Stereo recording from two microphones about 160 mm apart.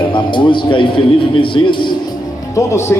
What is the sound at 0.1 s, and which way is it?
A man's voice, 30° left (ahead or behind).